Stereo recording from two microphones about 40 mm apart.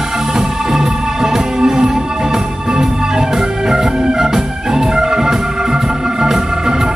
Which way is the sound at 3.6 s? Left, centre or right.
Centre.